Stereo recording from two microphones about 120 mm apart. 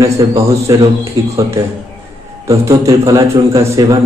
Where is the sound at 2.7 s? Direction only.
30° right (ahead or behind).